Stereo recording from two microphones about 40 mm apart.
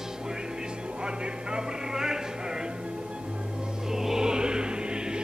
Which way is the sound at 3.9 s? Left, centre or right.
Centre.